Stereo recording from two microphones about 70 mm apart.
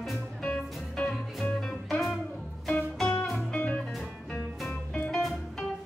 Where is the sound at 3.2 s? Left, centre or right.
Centre.